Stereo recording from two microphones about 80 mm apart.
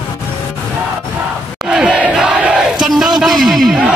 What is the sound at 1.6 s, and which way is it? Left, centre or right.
Battle cry, centre.